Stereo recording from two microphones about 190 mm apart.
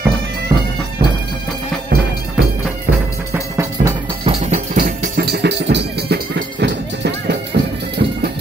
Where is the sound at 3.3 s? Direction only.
15° right (ahead or behind).